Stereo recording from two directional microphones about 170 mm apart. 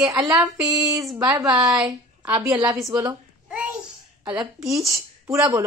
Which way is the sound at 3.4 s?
5° right (ahead or behind).